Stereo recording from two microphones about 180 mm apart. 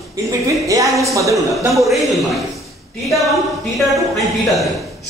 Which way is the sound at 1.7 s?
Centre (ahead or behind).